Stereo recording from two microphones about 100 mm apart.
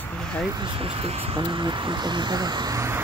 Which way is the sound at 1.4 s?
50° right (ahead or behind).